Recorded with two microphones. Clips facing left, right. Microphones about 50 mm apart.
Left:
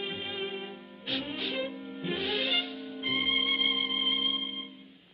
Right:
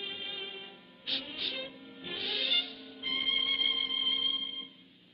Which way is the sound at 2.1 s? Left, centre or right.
Left.